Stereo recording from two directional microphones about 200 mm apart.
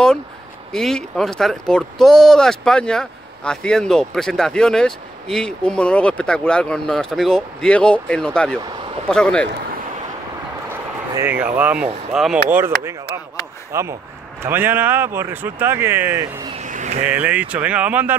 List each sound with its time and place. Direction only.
0.7 s speech: centre (ahead or behind)
10.7 s speech: 10° right (ahead or behind)
16.5 s a sound: 40° right (ahead or behind)
17.0 s speech: 10° right (ahead or behind)